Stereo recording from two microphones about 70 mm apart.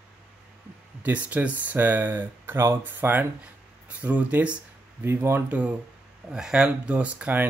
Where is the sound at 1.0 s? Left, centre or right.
Right.